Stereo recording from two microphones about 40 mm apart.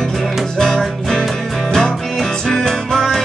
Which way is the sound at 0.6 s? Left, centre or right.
Centre.